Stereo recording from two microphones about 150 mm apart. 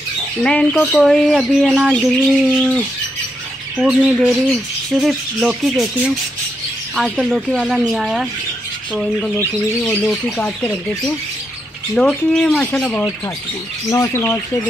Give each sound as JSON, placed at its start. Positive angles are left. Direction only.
{"t": 0.4, "sound": "speech", "side_deg": 5}
{"t": 11.9, "sound": "speech", "side_deg": 5}
{"t": 13.8, "sound": "speech", "side_deg": 20}